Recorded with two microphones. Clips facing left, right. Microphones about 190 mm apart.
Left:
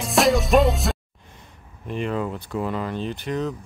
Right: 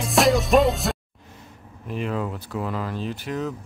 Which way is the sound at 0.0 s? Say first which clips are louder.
Even; centre (ahead or behind).